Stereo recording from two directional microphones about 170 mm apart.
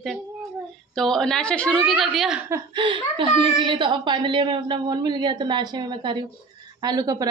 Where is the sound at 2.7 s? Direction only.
30° right (ahead or behind).